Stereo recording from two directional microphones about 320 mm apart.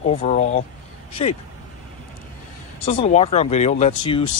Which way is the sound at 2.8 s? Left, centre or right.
Centre.